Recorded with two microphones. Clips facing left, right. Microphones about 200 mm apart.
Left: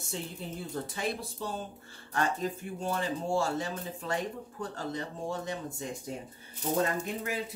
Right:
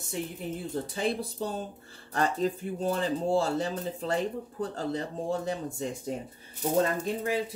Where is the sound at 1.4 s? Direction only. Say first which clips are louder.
Right 4 dB; 40° right (ahead or behind).